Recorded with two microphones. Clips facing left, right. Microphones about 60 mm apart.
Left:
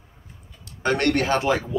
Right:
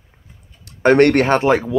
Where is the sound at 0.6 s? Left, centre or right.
Right.